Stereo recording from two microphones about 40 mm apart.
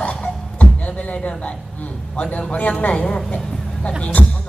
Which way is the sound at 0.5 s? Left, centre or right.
Left.